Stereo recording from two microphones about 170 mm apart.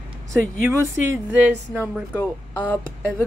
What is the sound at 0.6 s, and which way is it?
Speech, 10° right (ahead or behind).